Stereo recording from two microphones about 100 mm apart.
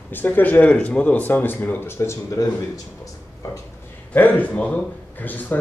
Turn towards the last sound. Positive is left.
turn(degrees=15)  # may be behind; listen again after turning